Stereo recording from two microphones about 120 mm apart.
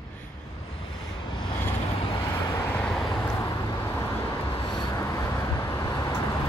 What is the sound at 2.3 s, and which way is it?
Vehicle, 25° left (ahead or behind).